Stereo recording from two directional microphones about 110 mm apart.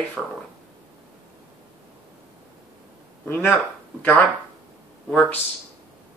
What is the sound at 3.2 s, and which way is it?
Speech, 20° left (ahead or behind).